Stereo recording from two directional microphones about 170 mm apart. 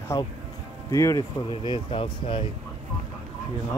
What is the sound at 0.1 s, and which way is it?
Speech, 25° left (ahead or behind).